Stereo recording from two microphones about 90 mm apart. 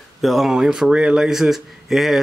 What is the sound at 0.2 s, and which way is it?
Speech, 5° right (ahead or behind).